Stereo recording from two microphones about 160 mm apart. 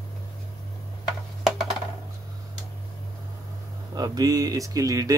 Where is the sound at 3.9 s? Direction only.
25° right (ahead or behind).